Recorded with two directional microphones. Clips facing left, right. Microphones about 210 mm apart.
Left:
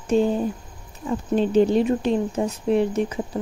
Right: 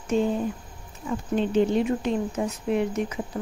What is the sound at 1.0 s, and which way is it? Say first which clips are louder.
Speech: left 4 dB; 35° left (ahead or behind).